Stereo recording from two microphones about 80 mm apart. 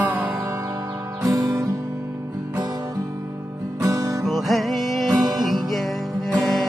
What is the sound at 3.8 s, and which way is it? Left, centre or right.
Music, right.